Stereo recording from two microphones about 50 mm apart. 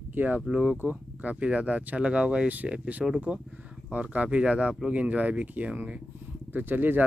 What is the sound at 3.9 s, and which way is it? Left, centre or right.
Speech, right.